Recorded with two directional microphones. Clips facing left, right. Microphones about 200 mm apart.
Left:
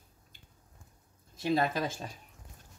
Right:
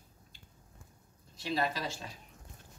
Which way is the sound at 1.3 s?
50° left (ahead or behind).